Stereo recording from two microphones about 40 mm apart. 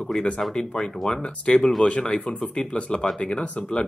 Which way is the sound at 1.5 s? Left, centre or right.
Left.